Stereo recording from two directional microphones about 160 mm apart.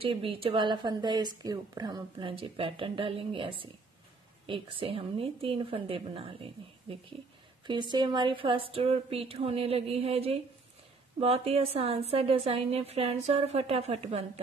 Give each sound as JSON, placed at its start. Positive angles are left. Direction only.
{"t": 0.0, "sound": "a woman's voice", "side_deg": -35}